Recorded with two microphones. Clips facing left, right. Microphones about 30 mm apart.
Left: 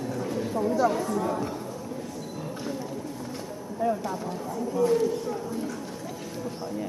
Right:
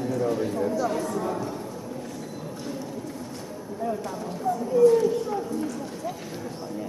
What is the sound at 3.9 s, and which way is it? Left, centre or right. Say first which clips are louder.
Speech: left 1 dB; centre.